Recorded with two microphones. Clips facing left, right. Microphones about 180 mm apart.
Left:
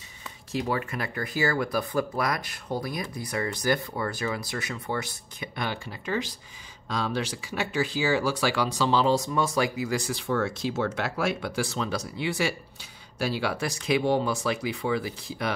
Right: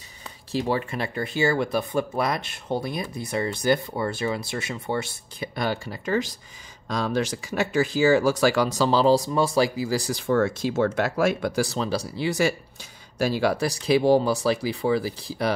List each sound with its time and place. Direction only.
0.5 s speech: 30° right (ahead or behind)
5.6 s speech: 40° right (ahead or behind)